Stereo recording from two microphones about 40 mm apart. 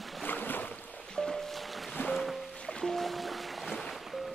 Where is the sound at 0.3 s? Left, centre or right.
Left.